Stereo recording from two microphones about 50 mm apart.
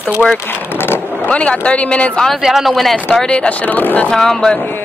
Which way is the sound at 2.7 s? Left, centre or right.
Centre.